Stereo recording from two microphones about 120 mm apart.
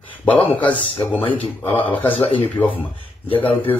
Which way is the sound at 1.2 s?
50° left (ahead or behind).